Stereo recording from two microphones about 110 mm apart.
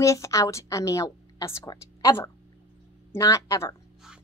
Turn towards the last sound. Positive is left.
turn(degrees=25)  # may be behind; listen again after turning